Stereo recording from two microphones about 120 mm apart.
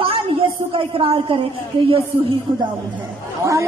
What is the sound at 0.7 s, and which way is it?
Speech, 50° right (ahead or behind).